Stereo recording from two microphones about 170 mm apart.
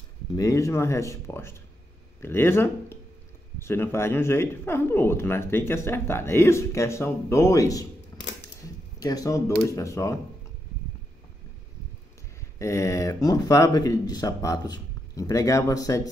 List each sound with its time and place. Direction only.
0.4 s speech: 20° left (ahead or behind)
9.0 s speech: 20° left (ahead or behind)
12.4 s speech: 15° left (ahead or behind)